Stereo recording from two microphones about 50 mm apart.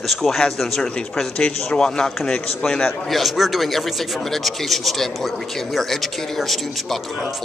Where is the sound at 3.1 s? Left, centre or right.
Centre.